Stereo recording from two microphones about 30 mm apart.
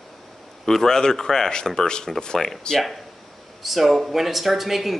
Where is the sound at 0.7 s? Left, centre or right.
Centre.